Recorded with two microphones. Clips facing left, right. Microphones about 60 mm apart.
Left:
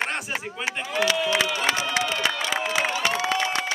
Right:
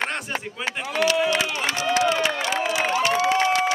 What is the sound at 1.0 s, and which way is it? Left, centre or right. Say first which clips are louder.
Speech: right 2 dB; centre.